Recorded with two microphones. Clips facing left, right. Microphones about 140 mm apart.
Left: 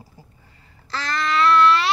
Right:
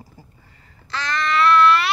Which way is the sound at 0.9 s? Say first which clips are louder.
Right 1 dB; 25° left (ahead or behind).